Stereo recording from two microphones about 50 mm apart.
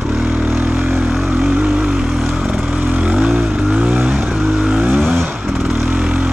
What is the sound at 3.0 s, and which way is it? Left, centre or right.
Vehicle, centre.